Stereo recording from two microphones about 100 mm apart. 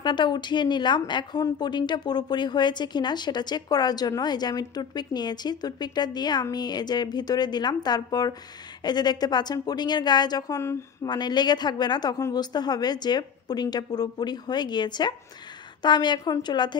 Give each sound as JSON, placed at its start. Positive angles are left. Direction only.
{"t": 0.0, "sound": "a woman's voice", "side_deg": 50}